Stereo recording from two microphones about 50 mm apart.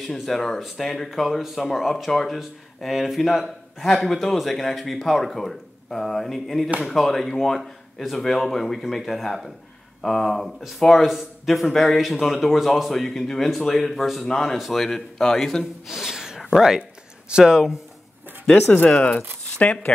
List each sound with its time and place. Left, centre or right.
0.3 s speech: centre
15.9 s a sound: centre
16.4 s speech: centre
19.6 s speech: left